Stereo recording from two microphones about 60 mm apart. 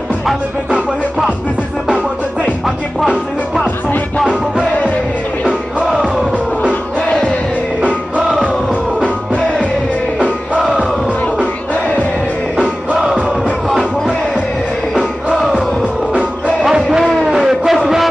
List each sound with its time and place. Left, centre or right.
8.2 s music: centre
9.0 s music: left
10.6 s crowd: centre
12.5 s music: centre
16.1 s music: centre
17.3 s a sound: centre